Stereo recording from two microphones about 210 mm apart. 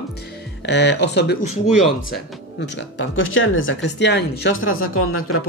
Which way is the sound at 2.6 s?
60° left (ahead or behind).